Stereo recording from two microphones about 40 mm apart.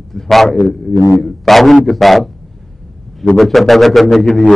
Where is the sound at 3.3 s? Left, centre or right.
Centre.